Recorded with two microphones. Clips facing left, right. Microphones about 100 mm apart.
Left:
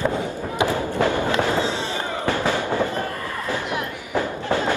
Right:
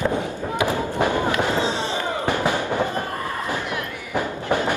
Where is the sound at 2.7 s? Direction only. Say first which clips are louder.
Even; 20° right (ahead or behind).